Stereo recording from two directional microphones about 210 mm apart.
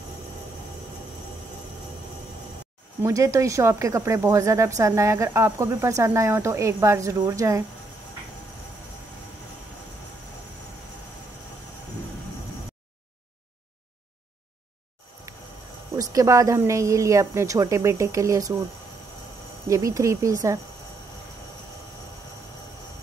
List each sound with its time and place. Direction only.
3.0 s speech: 15° right (ahead or behind)
15.3 s a sound: 15° right (ahead or behind)
16.0 s speech: 15° right (ahead or behind)
19.7 s speech: 15° right (ahead or behind)